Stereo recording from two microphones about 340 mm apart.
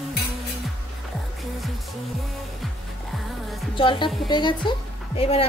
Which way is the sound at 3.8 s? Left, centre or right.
Centre.